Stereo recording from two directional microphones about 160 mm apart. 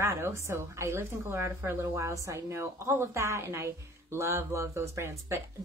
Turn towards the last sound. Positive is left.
turn(degrees=-15)  # may be behind; listen again after turning